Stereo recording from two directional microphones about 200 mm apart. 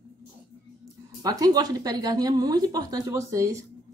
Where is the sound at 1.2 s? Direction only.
20° right (ahead or behind).